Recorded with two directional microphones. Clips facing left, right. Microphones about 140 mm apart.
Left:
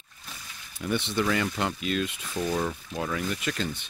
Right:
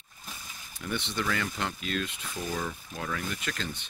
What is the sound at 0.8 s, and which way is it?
Speech, 10° left (ahead or behind).